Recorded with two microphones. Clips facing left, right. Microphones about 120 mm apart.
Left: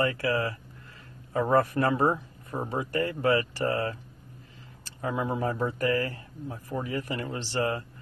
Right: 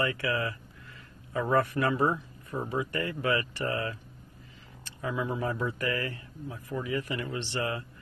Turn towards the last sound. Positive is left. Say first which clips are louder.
# left 3 dB
turn(degrees=40)  # may be behind; listen again after turning